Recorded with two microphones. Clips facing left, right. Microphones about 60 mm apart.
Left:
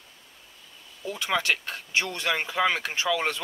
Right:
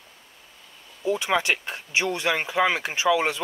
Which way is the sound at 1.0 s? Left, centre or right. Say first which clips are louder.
Right 5 dB; centre.